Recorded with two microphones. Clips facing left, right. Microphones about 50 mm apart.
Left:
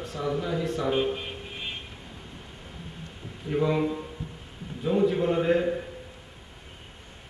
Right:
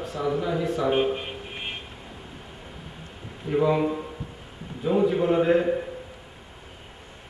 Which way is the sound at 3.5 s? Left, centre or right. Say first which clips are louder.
Right 3 dB; centre.